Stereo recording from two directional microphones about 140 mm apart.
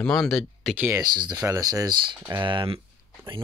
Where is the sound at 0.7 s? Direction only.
10° right (ahead or behind).